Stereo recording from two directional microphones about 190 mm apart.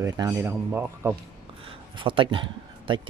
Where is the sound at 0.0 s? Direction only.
15° right (ahead or behind).